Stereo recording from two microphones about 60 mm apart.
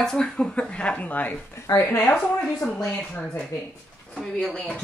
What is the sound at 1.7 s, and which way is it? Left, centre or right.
Speech, left.